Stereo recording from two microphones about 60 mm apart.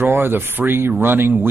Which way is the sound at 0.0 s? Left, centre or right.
Right.